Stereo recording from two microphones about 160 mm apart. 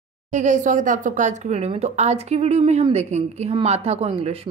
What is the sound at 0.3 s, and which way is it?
A woman's voice, 50° right (ahead or behind).